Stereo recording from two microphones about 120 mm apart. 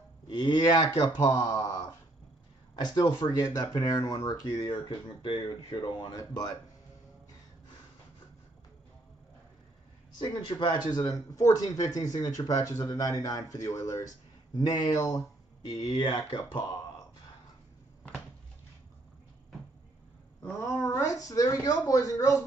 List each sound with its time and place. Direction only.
0.3 s speech: 40° left (ahead or behind)
1.2 s a sound: 30° left (ahead or behind)
2.8 s speech: 40° left (ahead or behind)
6.1 s speech: 30° left (ahead or behind)
10.1 s speech: 40° left (ahead or behind)
15.9 s speech: 45° left (ahead or behind)
20.6 s speech: 20° left (ahead or behind)